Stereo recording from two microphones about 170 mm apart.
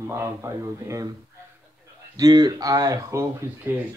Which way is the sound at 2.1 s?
25° right (ahead or behind).